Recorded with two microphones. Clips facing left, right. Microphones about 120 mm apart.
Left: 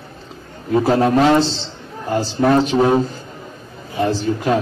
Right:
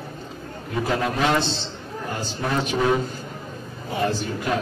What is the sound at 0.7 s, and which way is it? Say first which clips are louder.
Speech: left 9 dB; 35° left (ahead or behind).